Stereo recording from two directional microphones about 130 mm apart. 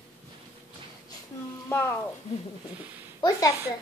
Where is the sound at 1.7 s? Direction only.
20° left (ahead or behind).